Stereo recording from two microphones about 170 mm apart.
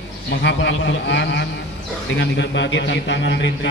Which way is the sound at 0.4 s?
90° left.